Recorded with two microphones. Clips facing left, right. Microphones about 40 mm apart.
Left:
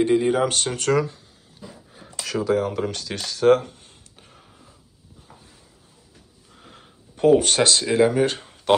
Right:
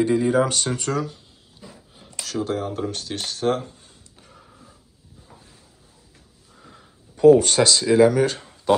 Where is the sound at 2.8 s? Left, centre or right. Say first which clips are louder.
Left 1 dB; left.